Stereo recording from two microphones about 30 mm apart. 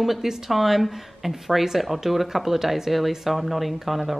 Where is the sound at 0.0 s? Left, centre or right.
Centre.